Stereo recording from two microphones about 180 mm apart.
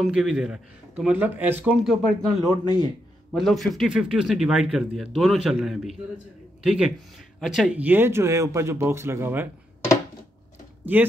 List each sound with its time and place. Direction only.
0.0 s speech: 5° right (ahead or behind)
2.4 s speech: 25° right (ahead or behind)
3.3 s speech: centre (ahead or behind)
10.9 s speech: 10° right (ahead or behind)